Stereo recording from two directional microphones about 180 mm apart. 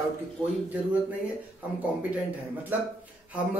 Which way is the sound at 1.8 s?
10° right (ahead or behind).